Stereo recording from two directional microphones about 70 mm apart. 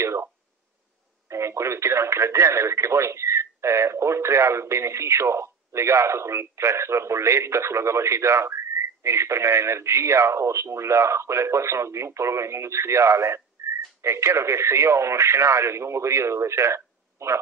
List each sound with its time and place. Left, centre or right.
0.0 s a sound: right
1.3 s speech: right
13.6 s whistling: right
14.0 s speech: right